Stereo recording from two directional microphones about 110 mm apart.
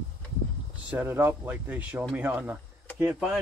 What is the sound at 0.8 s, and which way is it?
Speech, 15° right (ahead or behind).